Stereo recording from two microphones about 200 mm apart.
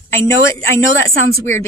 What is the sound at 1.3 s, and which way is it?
Speech, 15° left (ahead or behind).